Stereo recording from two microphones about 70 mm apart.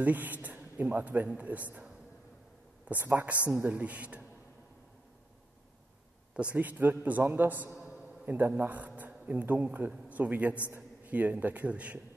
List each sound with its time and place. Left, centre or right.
0.0 s speech: right
2.9 s speech: right
6.5 s a man's voice: right